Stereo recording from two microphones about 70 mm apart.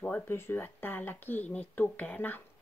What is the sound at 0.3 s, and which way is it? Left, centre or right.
Speech, left.